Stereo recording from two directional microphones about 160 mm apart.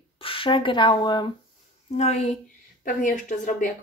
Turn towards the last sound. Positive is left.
turn(degrees=55)  # may be behind; listen again after turning